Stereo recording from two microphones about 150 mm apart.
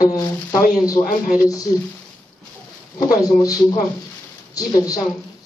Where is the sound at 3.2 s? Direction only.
25° left (ahead or behind).